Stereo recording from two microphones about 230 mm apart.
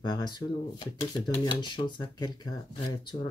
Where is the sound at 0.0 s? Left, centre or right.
Centre.